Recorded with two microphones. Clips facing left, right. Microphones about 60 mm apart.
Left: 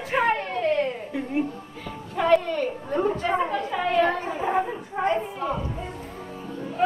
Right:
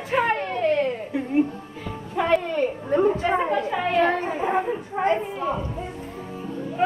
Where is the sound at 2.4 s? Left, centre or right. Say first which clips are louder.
Right 3 dB; centre.